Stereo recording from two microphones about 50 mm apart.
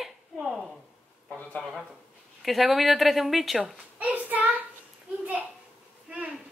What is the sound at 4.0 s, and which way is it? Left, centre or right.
Child singing, right.